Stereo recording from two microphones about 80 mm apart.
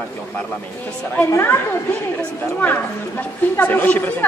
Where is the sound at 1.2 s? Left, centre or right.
Left.